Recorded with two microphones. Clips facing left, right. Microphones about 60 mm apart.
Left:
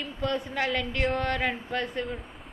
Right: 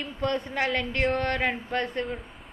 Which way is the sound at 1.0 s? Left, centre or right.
Centre.